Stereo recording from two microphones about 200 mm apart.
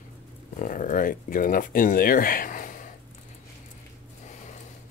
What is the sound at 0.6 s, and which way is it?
Speech, 40° left (ahead or behind).